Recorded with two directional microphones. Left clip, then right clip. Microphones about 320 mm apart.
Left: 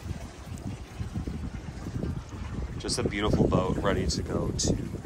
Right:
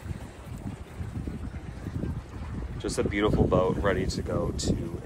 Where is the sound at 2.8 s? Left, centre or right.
Centre.